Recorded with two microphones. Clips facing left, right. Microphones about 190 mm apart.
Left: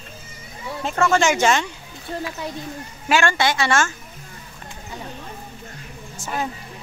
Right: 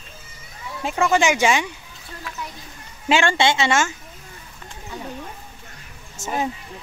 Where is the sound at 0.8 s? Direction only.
10° right (ahead or behind).